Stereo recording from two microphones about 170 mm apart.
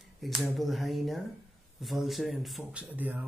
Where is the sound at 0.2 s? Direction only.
Centre (ahead or behind).